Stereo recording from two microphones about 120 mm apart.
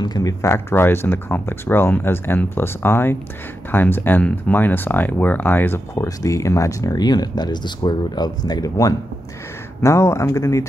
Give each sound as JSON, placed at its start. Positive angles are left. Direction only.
{"t": 0.0, "sound": "speech", "side_deg": 30}